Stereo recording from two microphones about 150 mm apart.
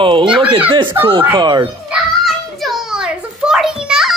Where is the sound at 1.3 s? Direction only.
30° right (ahead or behind).